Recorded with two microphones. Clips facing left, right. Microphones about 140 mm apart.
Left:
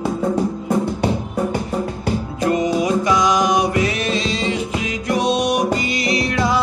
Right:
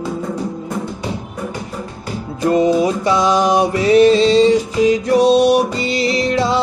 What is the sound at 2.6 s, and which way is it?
Music, 30° right (ahead or behind).